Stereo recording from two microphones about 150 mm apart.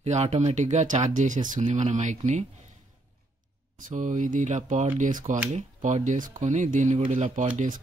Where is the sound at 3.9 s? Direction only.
55° right (ahead or behind).